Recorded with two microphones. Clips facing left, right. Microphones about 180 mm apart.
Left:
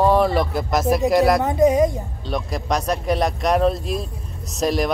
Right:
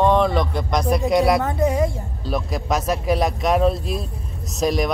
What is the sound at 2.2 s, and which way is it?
Speech, centre (ahead or behind).